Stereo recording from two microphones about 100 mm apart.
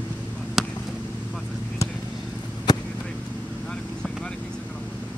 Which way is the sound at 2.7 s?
45° left (ahead or behind).